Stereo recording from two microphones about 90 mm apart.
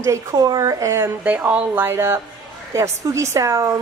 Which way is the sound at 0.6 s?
35° right (ahead or behind).